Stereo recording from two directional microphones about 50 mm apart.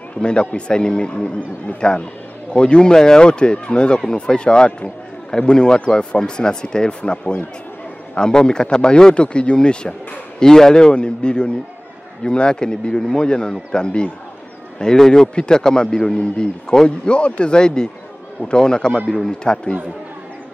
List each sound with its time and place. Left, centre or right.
0.2 s a man's voice: centre